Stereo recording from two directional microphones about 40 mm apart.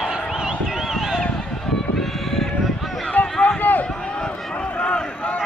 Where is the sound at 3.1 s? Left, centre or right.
Left.